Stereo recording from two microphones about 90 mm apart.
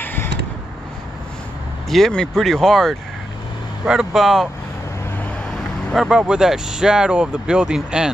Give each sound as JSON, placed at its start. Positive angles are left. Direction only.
{"t": 0.0, "sound": "a sound", "side_deg": 20}
{"t": 1.9, "sound": "speech", "side_deg": 5}
{"t": 5.9, "sound": "speech", "side_deg": -10}